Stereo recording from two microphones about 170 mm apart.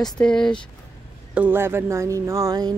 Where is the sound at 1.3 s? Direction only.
10° right (ahead or behind).